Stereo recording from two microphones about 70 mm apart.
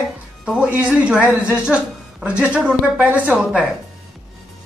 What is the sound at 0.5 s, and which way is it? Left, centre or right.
A woman's voice, centre.